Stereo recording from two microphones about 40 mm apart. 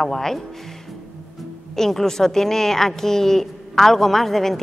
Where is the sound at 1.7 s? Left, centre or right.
Centre.